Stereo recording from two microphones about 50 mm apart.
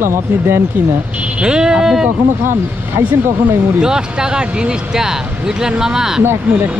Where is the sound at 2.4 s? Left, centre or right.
Right.